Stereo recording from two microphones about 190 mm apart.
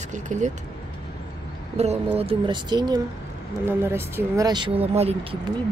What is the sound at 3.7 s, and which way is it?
Speech, 10° right (ahead or behind).